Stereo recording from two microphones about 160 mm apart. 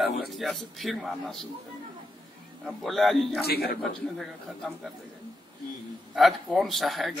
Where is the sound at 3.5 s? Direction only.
75° left (ahead or behind).